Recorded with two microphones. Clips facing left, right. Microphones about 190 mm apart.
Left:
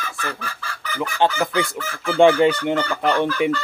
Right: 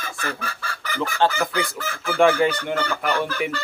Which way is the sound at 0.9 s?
20° left (ahead or behind).